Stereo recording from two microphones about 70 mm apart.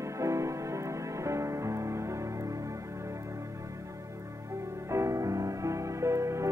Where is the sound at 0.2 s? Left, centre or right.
Right.